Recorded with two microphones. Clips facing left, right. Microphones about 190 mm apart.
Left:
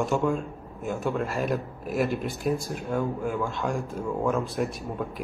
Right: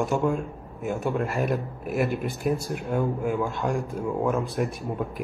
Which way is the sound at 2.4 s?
55° right (ahead or behind).